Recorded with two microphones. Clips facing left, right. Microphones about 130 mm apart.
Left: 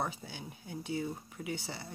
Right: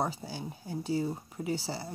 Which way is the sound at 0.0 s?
35° right (ahead or behind).